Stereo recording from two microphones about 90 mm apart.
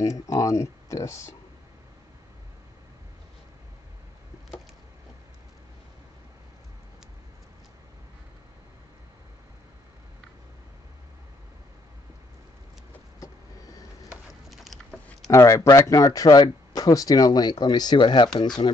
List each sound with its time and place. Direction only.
0.0 s speech: 35° left (ahead or behind)
13.2 s vehicle: 40° left (ahead or behind)
14.5 s a sound: centre (ahead or behind)
15.3 s speech: 35° left (ahead or behind); by 18.5 s 60° left (ahead or behind)